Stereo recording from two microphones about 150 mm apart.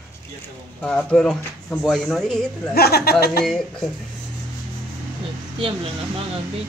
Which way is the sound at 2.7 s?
90° left.